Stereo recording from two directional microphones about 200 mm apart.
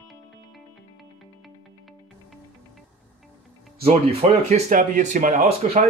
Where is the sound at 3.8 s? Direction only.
30° right (ahead or behind).